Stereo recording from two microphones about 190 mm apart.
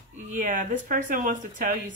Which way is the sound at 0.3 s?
45° right (ahead or behind).